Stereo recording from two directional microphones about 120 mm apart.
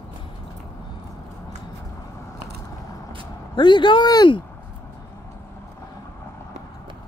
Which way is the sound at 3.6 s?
40° left (ahead or behind).